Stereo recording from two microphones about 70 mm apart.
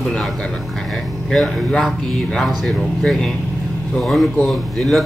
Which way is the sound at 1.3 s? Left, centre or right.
Centre.